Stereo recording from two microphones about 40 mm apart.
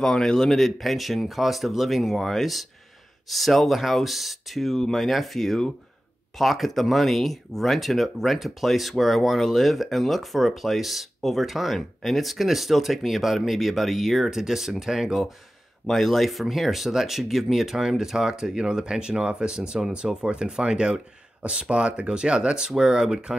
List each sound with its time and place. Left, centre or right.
0.0 s speech: centre
15.9 s speech: centre